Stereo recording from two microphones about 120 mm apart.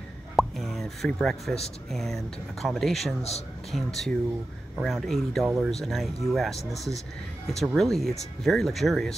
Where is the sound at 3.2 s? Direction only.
60° left (ahead or behind).